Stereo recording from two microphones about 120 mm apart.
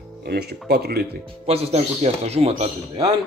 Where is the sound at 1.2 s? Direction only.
55° right (ahead or behind).